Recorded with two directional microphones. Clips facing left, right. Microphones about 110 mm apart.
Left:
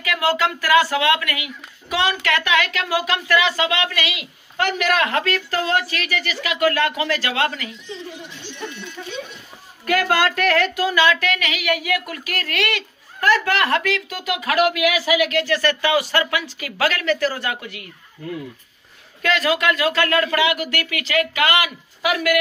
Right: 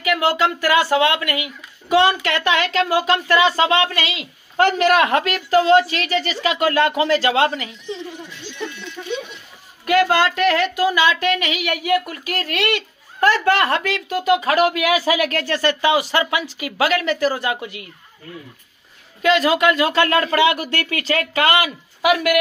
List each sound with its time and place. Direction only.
0.0 s speech: 25° right (ahead or behind)
9.0 s a man's voice: 20° right (ahead or behind)
19.2 s speech: 20° right (ahead or behind)